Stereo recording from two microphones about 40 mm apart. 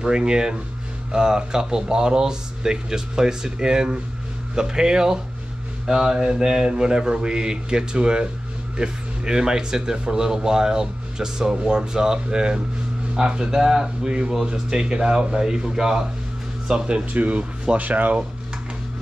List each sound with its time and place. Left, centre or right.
0.0 s speech: right
17.1 s speech: right